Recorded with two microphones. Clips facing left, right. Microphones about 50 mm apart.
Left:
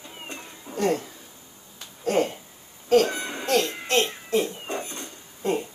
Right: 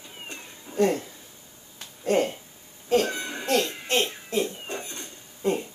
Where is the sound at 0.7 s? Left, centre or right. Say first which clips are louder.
Right 7 dB; centre.